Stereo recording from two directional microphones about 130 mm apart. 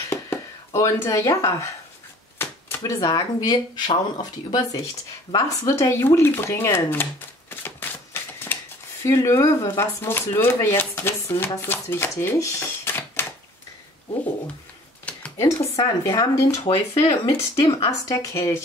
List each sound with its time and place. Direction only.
0.1 s a sound: 20° left (ahead or behind)
2.3 s speech: 20° left (ahead or behind)
7.6 s typewriter: 15° left (ahead or behind)
9.0 s speech: 25° left (ahead or behind)
15.3 s speech: 25° left (ahead or behind)
17.6 s speech: 45° left (ahead or behind)
18.0 s speech: 25° left (ahead or behind)